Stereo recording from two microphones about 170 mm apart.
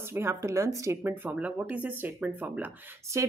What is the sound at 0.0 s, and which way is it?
Speech, 15° right (ahead or behind).